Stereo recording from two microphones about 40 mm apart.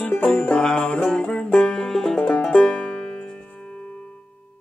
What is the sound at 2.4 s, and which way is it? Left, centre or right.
Music, left.